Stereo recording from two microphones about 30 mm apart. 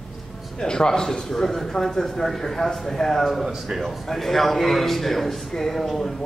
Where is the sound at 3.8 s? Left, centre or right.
Centre.